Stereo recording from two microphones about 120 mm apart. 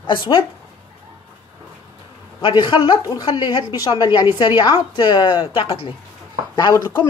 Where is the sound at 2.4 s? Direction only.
40° left (ahead or behind).